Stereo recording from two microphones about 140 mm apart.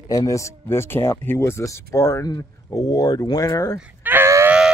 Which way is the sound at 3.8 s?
15° right (ahead or behind).